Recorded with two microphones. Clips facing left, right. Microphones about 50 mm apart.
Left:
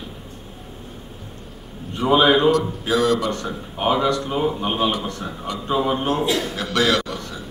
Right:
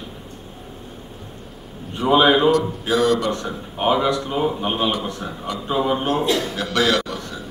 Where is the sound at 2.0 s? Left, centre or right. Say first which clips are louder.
Even; centre.